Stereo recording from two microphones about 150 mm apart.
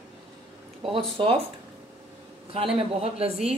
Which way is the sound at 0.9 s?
40° right (ahead or behind).